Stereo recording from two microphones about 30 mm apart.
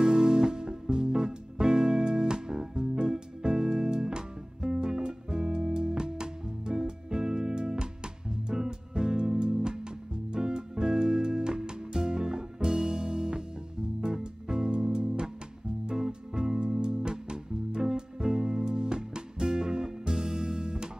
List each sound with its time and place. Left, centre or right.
0.0 s music: centre